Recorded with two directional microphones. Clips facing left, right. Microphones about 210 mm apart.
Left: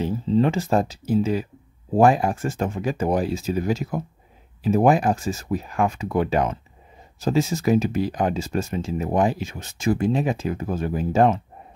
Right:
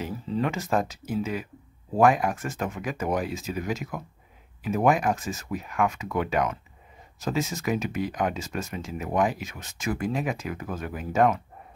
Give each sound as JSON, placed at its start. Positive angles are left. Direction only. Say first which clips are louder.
{"t": 0.0, "sound": "speech", "louder": "left 8 dB", "side_deg": 30}